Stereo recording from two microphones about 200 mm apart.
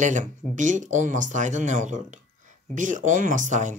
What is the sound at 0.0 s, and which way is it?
Speech, 40° right (ahead or behind).